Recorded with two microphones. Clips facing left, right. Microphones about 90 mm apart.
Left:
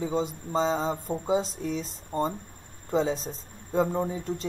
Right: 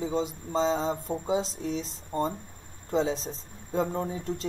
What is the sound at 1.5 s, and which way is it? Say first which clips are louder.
Speech: left 1 dB; 45° left (ahead or behind).